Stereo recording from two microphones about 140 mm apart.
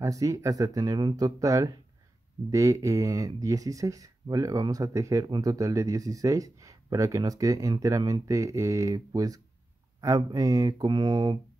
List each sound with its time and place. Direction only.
0.0 s speech: 25° right (ahead or behind)